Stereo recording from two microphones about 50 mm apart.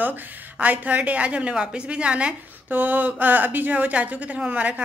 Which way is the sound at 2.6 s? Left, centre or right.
Right.